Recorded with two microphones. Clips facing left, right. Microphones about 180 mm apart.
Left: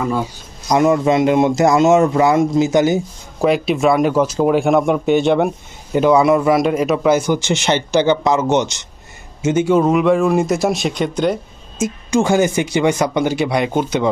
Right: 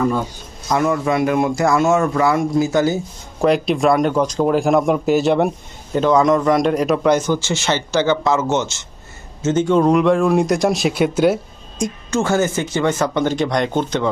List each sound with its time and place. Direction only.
0.7 s a man's voice: 20° left (ahead or behind)
3.3 s speech: centre (ahead or behind)
5.9 s a man's voice: 10° left (ahead or behind); by 11.3 s 5° right (ahead or behind)
11.8 s a man's voice: 15° left (ahead or behind)